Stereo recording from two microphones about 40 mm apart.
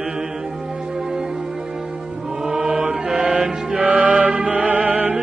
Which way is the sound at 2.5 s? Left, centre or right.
Centre.